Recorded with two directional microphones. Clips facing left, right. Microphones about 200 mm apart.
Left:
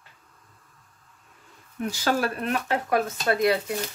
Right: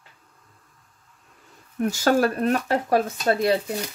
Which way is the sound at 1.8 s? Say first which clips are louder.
Right 5 dB; 45° right (ahead or behind).